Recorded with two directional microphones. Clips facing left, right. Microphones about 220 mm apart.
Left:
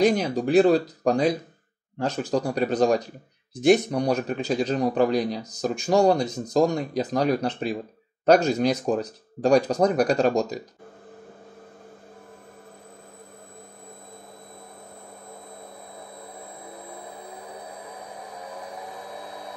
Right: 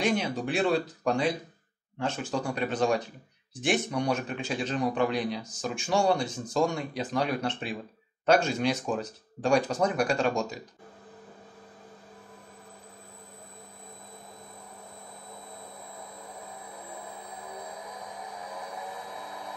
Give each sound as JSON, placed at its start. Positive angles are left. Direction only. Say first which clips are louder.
{"t": 0.0, "sound": "speech", "louder": "left 7 dB", "side_deg": 40}